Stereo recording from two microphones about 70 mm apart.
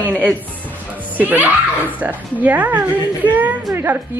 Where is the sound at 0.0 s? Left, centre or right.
Right.